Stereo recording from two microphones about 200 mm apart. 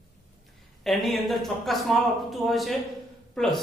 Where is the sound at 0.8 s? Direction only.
Centre (ahead or behind).